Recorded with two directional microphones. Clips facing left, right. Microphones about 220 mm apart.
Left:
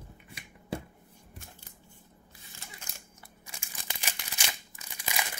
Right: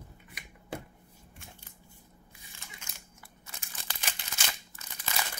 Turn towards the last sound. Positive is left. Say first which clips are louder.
# left 1 dB
turn(degrees=15)  # may be behind; listen again after turning